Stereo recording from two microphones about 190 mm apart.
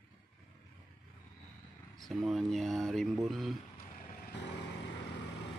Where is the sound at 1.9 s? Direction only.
Centre (ahead or behind).